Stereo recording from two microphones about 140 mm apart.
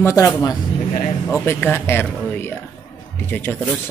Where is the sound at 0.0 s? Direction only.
25° left (ahead or behind).